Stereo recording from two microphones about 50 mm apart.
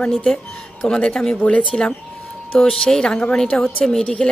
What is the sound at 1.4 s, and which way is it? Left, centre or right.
Speech, left.